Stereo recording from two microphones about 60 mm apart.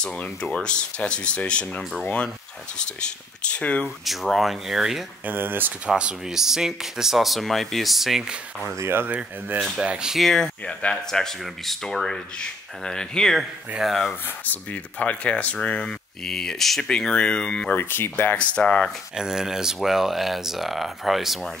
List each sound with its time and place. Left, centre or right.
0.0 s speech: centre
3.5 s speech: left
4.0 s speech: centre
5.2 s speech: right
5.9 s speech: centre
8.7 s speech: right
9.8 s speech: centre
10.2 s speech: centre
13.4 s speech: centre
14.2 s speech: left; by 17.7 s centre
17.7 s speech: left
18.5 s speech: centre
19.1 s speech: centre